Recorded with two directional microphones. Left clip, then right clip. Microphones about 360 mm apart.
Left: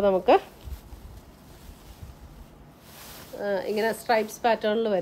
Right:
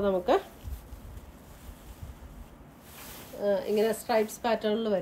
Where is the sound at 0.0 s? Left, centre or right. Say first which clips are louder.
Left 6 dB; centre.